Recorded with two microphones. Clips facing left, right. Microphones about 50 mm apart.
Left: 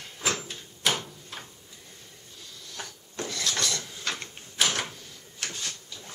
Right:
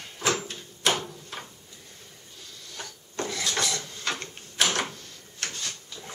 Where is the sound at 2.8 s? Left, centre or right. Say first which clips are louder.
Right 3 dB; centre.